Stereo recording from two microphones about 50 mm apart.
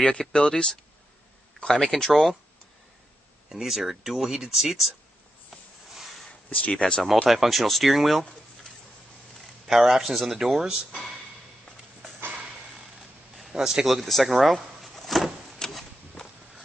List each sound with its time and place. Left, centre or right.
0.0 s speech: centre
3.4 s speech: centre
6.5 s speech: left
7.2 s speech: centre
9.7 s speech: centre
13.0 s a sound: centre
14.0 s speech: centre
15.0 s vehicle: centre